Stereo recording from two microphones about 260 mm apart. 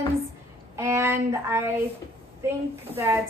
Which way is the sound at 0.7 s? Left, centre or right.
Centre.